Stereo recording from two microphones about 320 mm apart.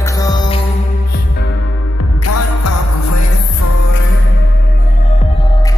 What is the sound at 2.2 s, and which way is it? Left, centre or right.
Music, left.